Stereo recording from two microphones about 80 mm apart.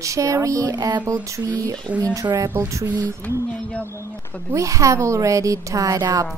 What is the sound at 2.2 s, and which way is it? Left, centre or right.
Speech, right.